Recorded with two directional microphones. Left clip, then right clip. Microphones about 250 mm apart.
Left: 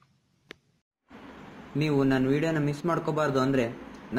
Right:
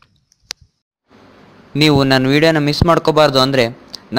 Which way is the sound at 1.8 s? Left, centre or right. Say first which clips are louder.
Right 13 dB; right.